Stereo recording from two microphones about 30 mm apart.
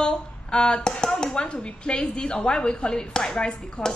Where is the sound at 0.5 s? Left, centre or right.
Left.